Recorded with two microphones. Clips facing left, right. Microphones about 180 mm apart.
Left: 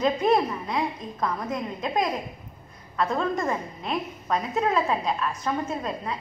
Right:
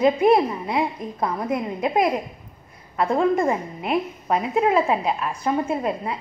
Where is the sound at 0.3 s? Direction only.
25° right (ahead or behind).